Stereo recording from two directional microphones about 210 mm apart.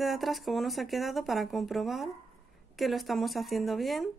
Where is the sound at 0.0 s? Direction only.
Centre (ahead or behind).